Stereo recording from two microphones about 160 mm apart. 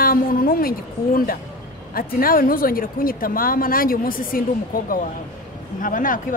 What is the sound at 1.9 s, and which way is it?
Speech, 65° left (ahead or behind).